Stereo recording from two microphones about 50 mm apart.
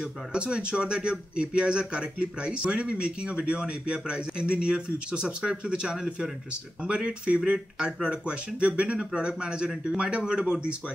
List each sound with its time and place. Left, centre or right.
0.3 s speech: centre